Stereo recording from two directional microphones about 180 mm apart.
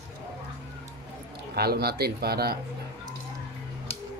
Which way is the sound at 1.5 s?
60° right (ahead or behind).